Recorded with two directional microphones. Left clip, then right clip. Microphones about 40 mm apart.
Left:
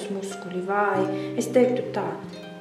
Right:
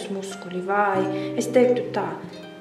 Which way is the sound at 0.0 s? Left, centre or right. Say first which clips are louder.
Even; right.